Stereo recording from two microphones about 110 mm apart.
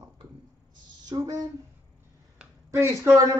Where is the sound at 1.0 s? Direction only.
35° right (ahead or behind).